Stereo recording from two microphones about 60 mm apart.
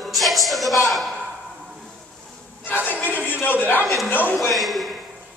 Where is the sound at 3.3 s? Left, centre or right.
Left.